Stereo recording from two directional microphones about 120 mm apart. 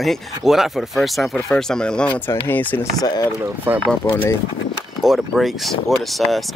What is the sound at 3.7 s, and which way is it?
Speech, 15° right (ahead or behind).